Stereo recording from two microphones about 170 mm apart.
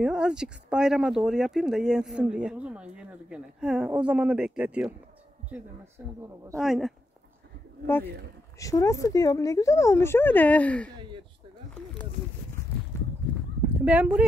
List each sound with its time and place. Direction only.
0.0 s speech: 5° right (ahead or behind)
6.6 s speech: centre (ahead or behind)
7.8 s speech: 15° left (ahead or behind)
11.7 s a sound: 5° left (ahead or behind)
13.8 s speech: 10° right (ahead or behind)